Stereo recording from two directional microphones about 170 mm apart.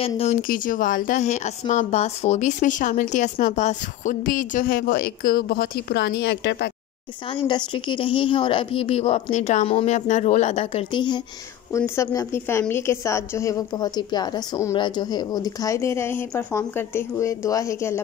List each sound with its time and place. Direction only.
0.0 s a woman's voice: 35° left (ahead or behind)
0.4 s speech: 55° left (ahead or behind); by 6.7 s 75° left (ahead or behind)
7.4 s a woman's voice: 25° left (ahead or behind)
11.7 s a woman's voice: 15° left (ahead or behind)